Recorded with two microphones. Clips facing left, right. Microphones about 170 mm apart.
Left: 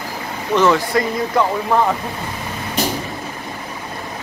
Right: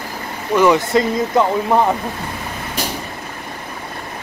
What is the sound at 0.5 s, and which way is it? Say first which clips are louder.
Speech: right 2 dB; 15° right (ahead or behind).